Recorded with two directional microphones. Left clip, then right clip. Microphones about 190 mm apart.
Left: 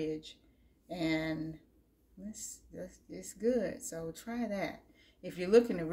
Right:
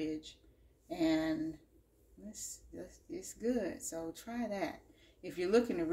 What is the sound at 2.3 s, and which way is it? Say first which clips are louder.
Speech: even; 20° left (ahead or behind).